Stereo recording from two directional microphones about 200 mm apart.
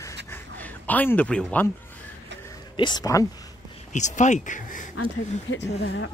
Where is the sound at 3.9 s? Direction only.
35° left (ahead or behind).